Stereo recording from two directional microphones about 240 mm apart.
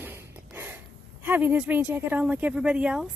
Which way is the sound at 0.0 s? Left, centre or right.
Centre.